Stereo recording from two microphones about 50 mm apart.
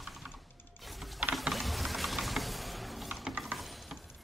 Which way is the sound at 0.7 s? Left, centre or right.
Centre.